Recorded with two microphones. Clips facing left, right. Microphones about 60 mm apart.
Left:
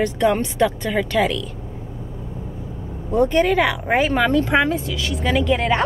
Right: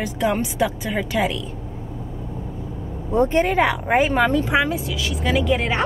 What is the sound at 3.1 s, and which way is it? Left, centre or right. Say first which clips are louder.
Speech: left 1 dB; right.